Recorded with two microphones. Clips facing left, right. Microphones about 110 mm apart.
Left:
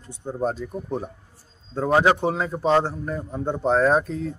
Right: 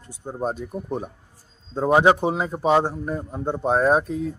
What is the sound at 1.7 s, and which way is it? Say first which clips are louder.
A man's voice: right 2 dB; 20° right (ahead or behind).